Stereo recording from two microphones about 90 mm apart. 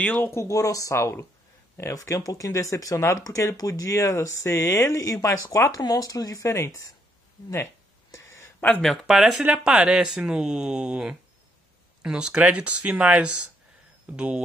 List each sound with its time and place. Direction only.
0.2 s speech: 30° left (ahead or behind)
7.5 s a sound: 30° left (ahead or behind)
8.5 s speech: 20° left (ahead or behind)
8.8 s speech: centre (ahead or behind)